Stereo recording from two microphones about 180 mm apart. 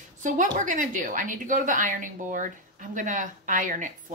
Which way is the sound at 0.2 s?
45° right (ahead or behind).